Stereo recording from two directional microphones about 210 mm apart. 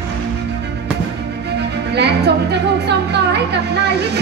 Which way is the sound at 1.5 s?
55° right (ahead or behind).